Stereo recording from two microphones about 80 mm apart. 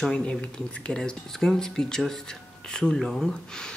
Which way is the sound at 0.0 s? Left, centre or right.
Centre.